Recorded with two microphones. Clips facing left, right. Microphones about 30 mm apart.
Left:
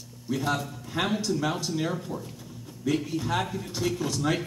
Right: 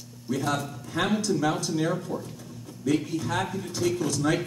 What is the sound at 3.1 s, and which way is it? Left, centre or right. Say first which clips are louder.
Speech: even; centre.